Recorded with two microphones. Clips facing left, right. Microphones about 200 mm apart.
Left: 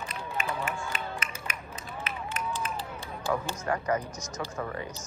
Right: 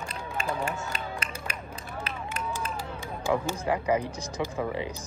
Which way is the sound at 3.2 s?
15° right (ahead or behind).